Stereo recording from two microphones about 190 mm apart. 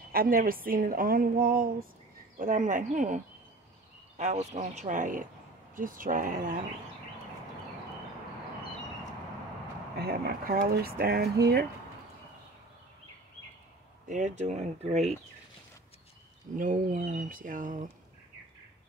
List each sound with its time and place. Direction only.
0.1 s a woman's voice: 50° right (ahead or behind)
4.2 s a woman's voice: 40° right (ahead or behind)
9.9 s a woman's voice: 55° right (ahead or behind)
14.0 s speech: 40° right (ahead or behind)
16.5 s a woman's voice: 45° right (ahead or behind)